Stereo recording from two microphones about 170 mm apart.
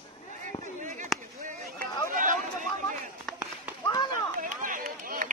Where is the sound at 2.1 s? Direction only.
50° right (ahead or behind).